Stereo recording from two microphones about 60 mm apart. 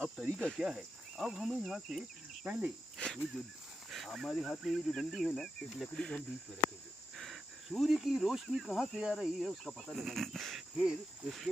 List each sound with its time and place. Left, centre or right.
0.0 s cricket: right
0.6 s speech: centre
2.4 s insect: right
3.9 s speech: centre
7.2 s speech: centre